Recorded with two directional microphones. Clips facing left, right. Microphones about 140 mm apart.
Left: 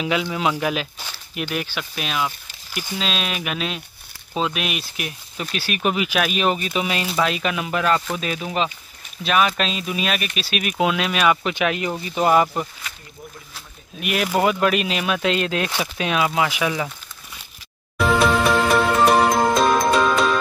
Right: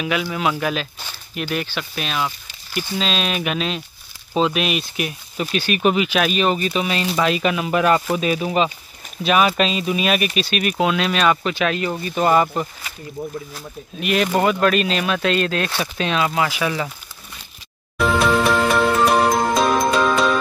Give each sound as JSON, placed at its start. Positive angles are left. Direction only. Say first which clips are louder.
{"t": 0.0, "sound": "speech", "louder": "even", "side_deg": 20}
{"t": 1.1, "sound": "speech", "louder": "right 2 dB", "side_deg": 5}
{"t": 13.9, "sound": "speech", "louder": "right 3 dB", "side_deg": 5}
{"t": 17.9, "sound": "music", "louder": "even", "side_deg": 0}